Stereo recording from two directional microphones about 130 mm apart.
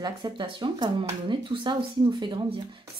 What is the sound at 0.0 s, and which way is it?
Speech, 35° right (ahead or behind).